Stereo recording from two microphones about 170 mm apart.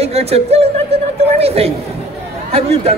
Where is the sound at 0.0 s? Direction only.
35° right (ahead or behind).